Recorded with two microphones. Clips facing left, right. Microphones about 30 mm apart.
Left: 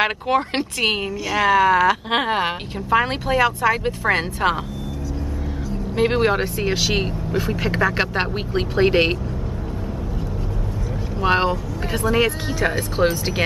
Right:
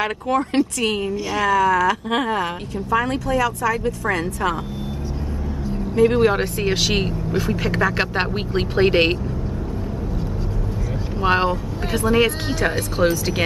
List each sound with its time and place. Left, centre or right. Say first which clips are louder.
0.0 s speech: left 2 dB; left
5.9 s speech: right 3 dB; left
6.3 s speech: right 1 dB; centre
11.1 s speech: even; centre
12.1 s speech: right 2 dB; centre